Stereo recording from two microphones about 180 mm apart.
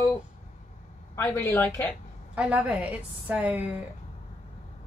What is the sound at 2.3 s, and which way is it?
A woman's voice, 10° right (ahead or behind).